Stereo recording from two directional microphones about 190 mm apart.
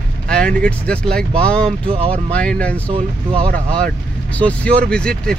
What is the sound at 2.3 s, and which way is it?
Speech, 5° left (ahead or behind).